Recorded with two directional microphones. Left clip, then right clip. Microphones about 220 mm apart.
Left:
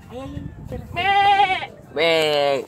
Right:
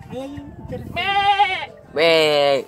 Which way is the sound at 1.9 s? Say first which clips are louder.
Right 3 dB; 25° right (ahead or behind).